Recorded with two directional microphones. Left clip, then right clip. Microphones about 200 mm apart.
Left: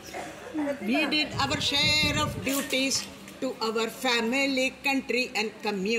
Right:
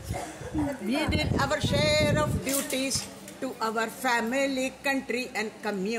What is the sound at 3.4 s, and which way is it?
Speech, 20° right (ahead or behind).